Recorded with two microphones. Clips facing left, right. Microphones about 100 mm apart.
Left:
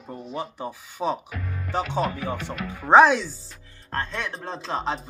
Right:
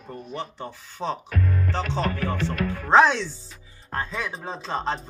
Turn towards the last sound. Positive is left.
turn(degrees=0)  # may be behind; listen again after turning